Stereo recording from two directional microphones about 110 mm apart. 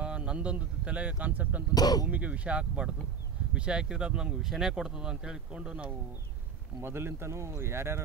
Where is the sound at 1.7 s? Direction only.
35° left (ahead or behind).